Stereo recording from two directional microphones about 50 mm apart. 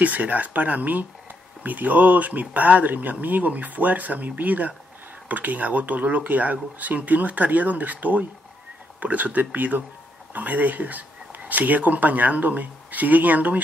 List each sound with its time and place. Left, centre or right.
0.0 s speech: right